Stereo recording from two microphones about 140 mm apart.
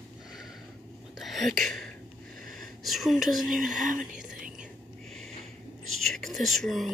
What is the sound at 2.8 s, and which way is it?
Speech, centre (ahead or behind).